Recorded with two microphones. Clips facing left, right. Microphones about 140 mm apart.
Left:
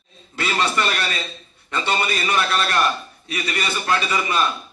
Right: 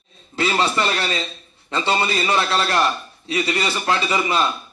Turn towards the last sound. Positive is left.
turn(degrees=-25)  # may be behind; listen again after turning